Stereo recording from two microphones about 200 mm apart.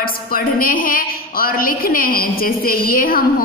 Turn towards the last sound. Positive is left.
turn(degrees=45)  # may be behind; listen again after turning